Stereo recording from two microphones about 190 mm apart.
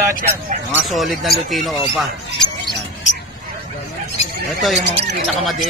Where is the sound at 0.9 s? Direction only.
Centre (ahead or behind).